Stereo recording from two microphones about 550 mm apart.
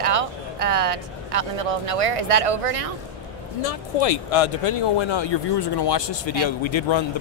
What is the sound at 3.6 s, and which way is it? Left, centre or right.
Speech, left.